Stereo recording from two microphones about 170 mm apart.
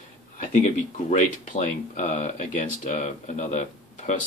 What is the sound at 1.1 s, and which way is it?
Speech, 45° left (ahead or behind).